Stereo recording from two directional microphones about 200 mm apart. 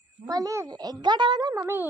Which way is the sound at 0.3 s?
15° right (ahead or behind).